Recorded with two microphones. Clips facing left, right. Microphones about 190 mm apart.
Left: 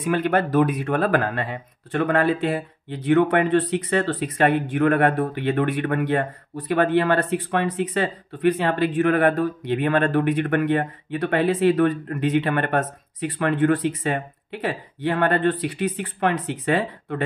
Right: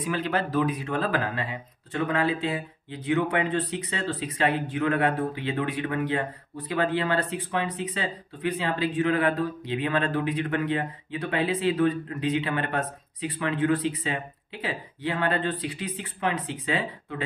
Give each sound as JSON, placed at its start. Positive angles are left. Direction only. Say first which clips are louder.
{"t": 0.0, "sound": "speech", "louder": "left 6 dB", "side_deg": 55}